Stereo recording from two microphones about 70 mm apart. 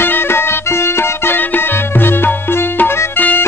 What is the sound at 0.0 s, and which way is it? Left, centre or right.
Music, left.